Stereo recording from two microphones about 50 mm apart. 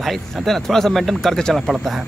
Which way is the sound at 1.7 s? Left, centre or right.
Centre.